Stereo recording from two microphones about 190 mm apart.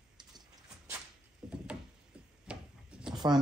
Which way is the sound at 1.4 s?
5° right (ahead or behind).